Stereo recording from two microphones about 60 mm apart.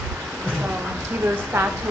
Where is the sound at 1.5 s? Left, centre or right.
Right.